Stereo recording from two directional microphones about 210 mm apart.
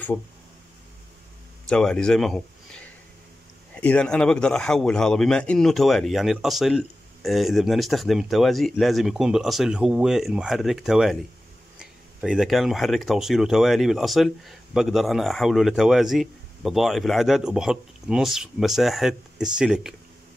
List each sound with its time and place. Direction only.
1.7 s speech: 5° left (ahead or behind)